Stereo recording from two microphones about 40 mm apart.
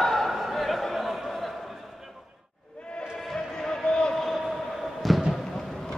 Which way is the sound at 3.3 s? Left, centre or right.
Centre.